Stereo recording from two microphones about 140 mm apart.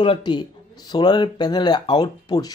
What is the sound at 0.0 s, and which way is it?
Speech, 35° left (ahead or behind).